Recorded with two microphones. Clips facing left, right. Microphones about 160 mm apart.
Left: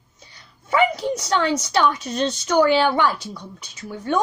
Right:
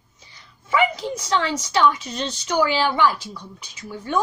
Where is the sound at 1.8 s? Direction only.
55° left (ahead or behind).